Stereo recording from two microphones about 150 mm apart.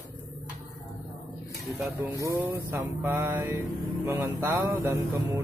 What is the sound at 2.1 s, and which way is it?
A man's voice, 15° right (ahead or behind).